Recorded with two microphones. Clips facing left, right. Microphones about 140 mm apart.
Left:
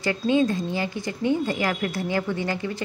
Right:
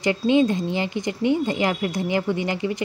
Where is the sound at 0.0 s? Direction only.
20° right (ahead or behind).